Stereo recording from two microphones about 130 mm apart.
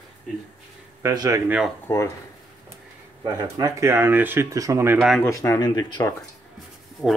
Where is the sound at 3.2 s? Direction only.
25° right (ahead or behind).